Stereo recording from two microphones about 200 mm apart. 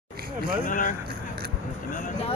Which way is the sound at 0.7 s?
40° left (ahead or behind).